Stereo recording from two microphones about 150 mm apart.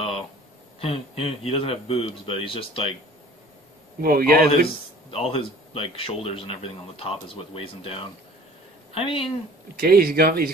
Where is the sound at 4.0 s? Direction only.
80° right.